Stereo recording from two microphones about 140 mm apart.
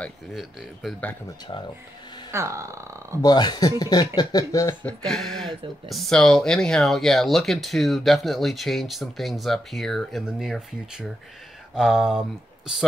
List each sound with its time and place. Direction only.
0.3 s speech: centre (ahead or behind)
1.5 s speech: 35° left (ahead or behind)
2.3 s speech: 20° right (ahead or behind)
3.2 s speech: 30° left (ahead or behind)
4.8 s speech: 5° left (ahead or behind)